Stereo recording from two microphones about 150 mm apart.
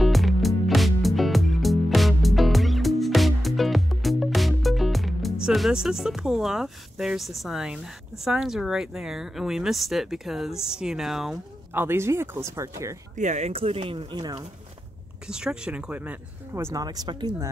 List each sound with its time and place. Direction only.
0.0 s music: centre (ahead or behind)
11.7 s speech: 15° right (ahead or behind)
13.1 s speech: 55° right (ahead or behind); by 14.4 s 30° right (ahead or behind)
15.2 s speech: 5° right (ahead or behind)
16.5 s speech: 20° right (ahead or behind)